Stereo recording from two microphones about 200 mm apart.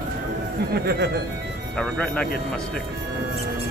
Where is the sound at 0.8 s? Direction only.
55° right (ahead or behind).